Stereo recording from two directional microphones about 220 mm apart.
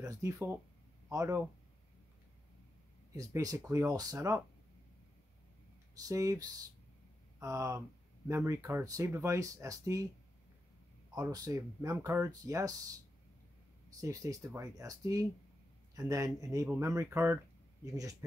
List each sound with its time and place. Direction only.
0.0 s speech: 15° right (ahead or behind)
3.2 s speech: 15° right (ahead or behind)
6.0 s speech: 15° right (ahead or behind)
11.1 s speech: 15° right (ahead or behind)